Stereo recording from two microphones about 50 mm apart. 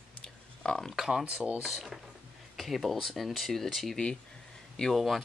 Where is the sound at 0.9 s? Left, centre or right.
Centre.